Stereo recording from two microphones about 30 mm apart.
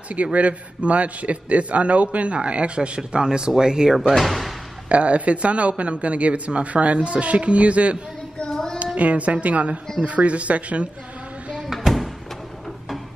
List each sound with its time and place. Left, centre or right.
0.1 s a man's voice: right
3.0 s speech: right
4.2 s speech: centre
4.8 s a man's voice: right
11.5 s a sound: centre